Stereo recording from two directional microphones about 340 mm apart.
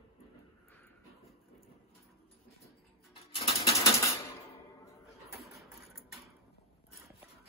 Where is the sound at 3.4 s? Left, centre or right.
Centre.